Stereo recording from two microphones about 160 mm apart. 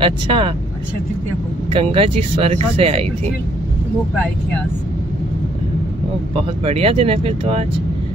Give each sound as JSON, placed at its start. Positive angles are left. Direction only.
{"t": 0.0, "sound": "speech", "side_deg": -30}
{"t": 1.7, "sound": "speech", "side_deg": -35}
{"t": 6.6, "sound": "speech", "side_deg": -40}